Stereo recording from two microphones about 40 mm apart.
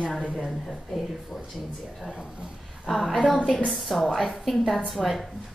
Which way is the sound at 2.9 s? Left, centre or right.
Centre.